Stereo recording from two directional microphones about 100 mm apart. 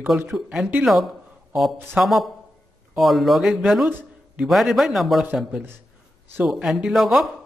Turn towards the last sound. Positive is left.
turn(degrees=0)  # may be behind; listen again after turning